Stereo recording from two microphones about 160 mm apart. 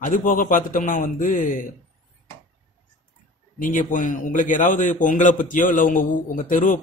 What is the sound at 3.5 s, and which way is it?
A man's voice, 55° left (ahead or behind).